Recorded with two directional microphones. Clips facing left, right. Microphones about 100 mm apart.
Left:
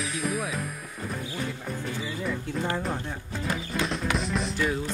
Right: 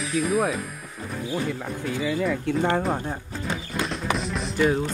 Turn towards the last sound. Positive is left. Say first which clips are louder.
# right 6 dB
turn(degrees=-45)  # may be behind; listen again after turning